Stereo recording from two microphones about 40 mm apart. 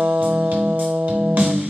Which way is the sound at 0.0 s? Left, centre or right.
Right.